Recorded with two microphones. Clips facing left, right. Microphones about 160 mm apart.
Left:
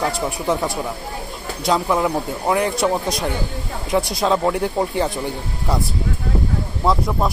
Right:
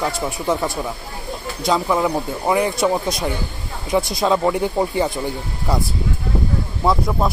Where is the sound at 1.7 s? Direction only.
Centre (ahead or behind).